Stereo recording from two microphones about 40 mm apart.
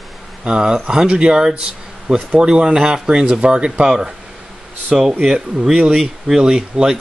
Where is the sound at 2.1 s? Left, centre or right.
Centre.